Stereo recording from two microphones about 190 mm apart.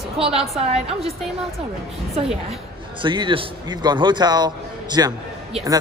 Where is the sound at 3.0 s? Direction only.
25° right (ahead or behind).